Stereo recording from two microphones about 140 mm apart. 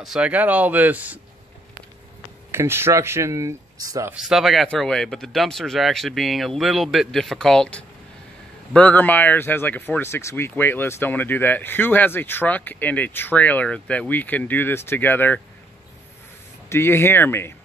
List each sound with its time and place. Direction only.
0.0 s speech: 5° right (ahead or behind)
2.5 s speech: 15° right (ahead or behind)
4.1 s speech: 5° right (ahead or behind); by 15.4 s 15° left (ahead or behind)
16.6 s speech: 15° left (ahead or behind)